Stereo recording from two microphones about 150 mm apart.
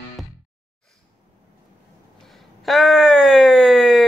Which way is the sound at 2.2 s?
Centre (ahead or behind).